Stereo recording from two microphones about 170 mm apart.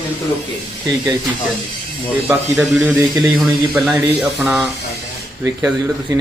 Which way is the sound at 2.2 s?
10° right (ahead or behind).